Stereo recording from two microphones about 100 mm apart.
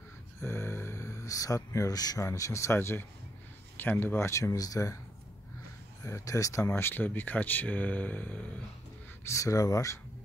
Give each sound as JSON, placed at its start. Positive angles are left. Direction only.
{"t": 0.4, "sound": "a sound", "side_deg": 25}
{"t": 2.2, "sound": "speech", "side_deg": 30}
{"t": 6.0, "sound": "speech", "side_deg": 30}
{"t": 9.2, "sound": "speech", "side_deg": 30}